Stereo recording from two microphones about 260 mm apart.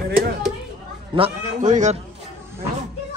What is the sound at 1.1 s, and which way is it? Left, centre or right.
Speech, right.